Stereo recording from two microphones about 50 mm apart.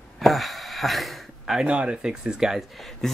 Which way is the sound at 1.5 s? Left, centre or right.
Right.